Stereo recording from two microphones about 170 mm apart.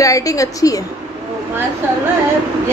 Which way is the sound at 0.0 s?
20° left (ahead or behind).